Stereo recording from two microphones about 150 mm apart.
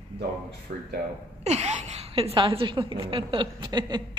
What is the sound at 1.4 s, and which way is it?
A woman's voice, 45° right (ahead or behind).